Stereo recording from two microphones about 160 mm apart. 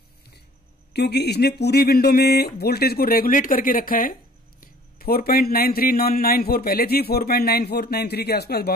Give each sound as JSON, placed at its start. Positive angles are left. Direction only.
{"t": 0.9, "sound": "speech", "side_deg": 90}